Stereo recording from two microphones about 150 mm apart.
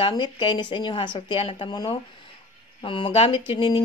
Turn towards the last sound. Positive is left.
turn(degrees=35)  # may be behind; listen again after turning